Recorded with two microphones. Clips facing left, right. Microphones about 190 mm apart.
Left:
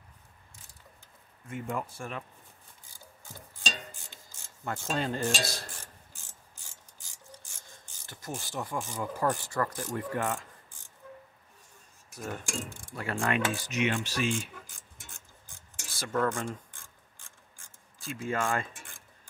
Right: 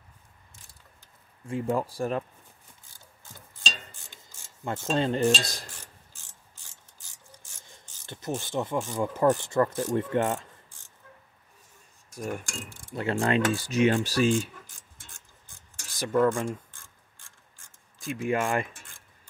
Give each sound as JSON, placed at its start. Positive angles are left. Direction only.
{"t": 1.5, "sound": "cutlery", "side_deg": -35}
{"t": 4.6, "sound": "speech", "side_deg": -25}
{"t": 8.1, "sound": "speech", "side_deg": -25}
{"t": 12.2, "sound": "speech", "side_deg": -10}
{"t": 12.9, "sound": "cutlery", "side_deg": -25}
{"t": 15.9, "sound": "speech", "side_deg": -15}
{"t": 17.9, "sound": "speech", "side_deg": -15}